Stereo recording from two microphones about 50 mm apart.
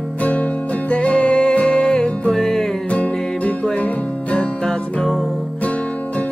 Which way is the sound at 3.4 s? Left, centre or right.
Left.